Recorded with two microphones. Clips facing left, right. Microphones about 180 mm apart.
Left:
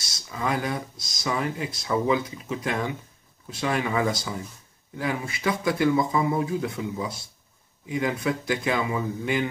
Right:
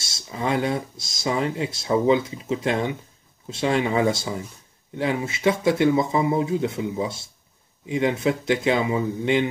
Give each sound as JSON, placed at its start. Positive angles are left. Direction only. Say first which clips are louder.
{"t": 0.0, "sound": "speech", "louder": "right 2 dB", "side_deg": -25}